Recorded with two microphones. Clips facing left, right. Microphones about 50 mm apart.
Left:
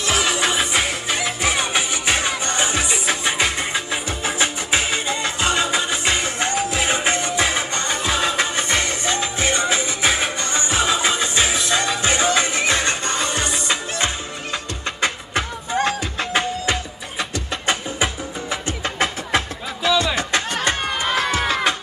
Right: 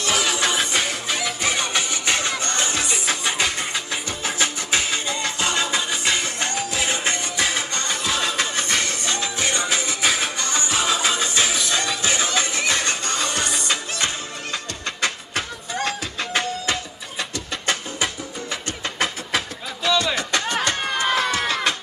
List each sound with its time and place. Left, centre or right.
0.0 s music: centre
20.8 s music: centre